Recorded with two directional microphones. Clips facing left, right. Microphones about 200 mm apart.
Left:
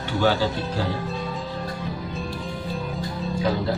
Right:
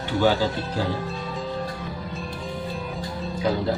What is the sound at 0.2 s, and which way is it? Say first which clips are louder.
Speech: even; 20° right (ahead or behind).